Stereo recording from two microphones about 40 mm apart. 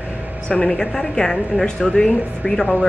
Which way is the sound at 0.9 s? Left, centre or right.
Centre.